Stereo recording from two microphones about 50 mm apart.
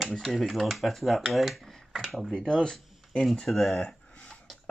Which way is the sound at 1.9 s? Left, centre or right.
Centre.